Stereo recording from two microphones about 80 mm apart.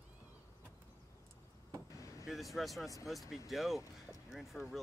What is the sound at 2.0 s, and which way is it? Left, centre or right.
Vehicle, left.